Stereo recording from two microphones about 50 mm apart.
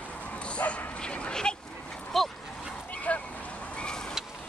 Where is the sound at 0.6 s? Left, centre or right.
Left.